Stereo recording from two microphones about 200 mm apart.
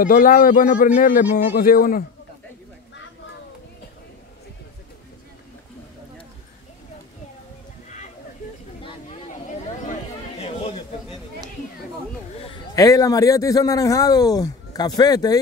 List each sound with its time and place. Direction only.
0.0 s a man's voice: 45° left (ahead or behind)
10.4 s a sound: 30° left (ahead or behind)
12.7 s a man's voice: 15° left (ahead or behind)